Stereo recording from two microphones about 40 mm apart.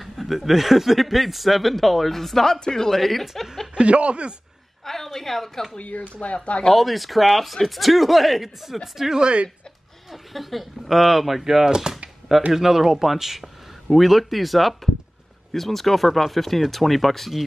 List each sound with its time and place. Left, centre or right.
0.0 s a woman's voice: centre
3.7 s speech: right
4.8 s a woman's voice: centre
5.8 s speech: left
6.1 s speech: left
6.7 s speech: centre
9.2 s speech: right
10.1 s speech: centre